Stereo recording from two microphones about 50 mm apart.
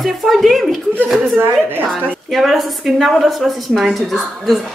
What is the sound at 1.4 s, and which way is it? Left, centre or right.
Speech, right.